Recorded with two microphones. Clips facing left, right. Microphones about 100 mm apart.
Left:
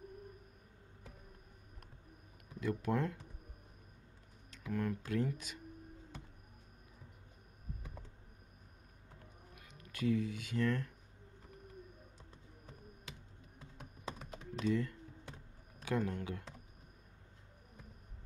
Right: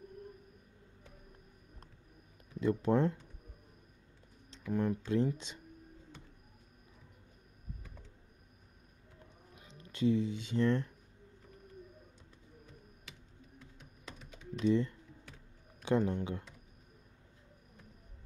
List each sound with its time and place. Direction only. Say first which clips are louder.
2.6 s speech: right 6 dB; 30° right (ahead or behind)
4.5 s speech: right 5 dB; 25° right (ahead or behind)
9.6 s speech: right 6 dB; 25° right (ahead or behind)
13.6 s typing: left 6 dB; 40° left (ahead or behind)
14.7 s speech: right 5 dB; 25° right (ahead or behind)